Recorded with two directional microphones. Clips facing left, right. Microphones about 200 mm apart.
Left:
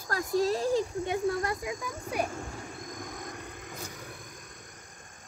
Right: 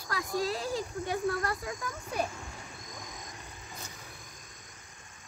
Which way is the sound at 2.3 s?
50° left (ahead or behind).